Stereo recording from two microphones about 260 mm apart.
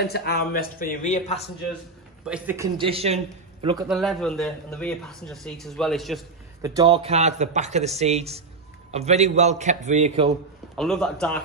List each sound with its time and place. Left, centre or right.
0.0 s speech: left
2.2 s a man's voice: centre; by 3.2 s right
3.8 s speech: centre
6.6 s a man's voice: centre
10.8 s speech: centre